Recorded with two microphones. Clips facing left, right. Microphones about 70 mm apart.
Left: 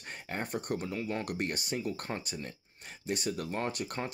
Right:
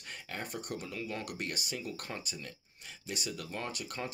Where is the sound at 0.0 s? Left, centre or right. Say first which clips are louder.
Left 4 dB; left.